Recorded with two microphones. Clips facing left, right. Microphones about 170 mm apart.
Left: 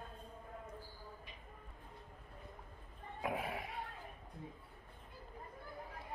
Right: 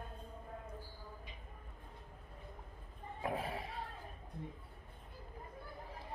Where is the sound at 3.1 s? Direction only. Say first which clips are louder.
Even; 30° right (ahead or behind).